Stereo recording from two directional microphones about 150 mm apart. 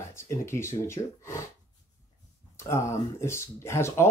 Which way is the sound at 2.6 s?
20° left (ahead or behind).